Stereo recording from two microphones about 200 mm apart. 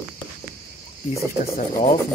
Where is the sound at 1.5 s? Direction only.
40° left (ahead or behind).